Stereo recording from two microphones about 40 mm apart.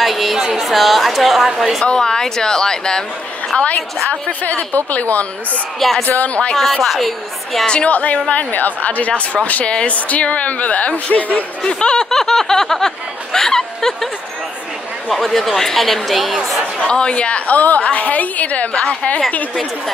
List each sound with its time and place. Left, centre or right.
0.0 s a woman's voice: centre
1.9 s speech: centre
3.5 s a woman's voice: left
5.8 s speech: centre
6.0 s a woman's voice: left
6.8 s speech: centre
7.6 s speech: left
7.9 s a woman's voice: left
11.6 s speech: left
12.1 s speech: centre
15.0 s speech: centre
16.8 s a woman's voice: left
18.7 s speech: left